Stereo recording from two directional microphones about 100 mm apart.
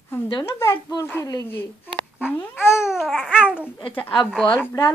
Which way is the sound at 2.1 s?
10° right (ahead or behind).